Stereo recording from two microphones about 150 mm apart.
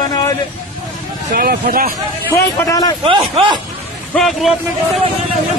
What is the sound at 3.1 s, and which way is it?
Speech, 40° right (ahead or behind).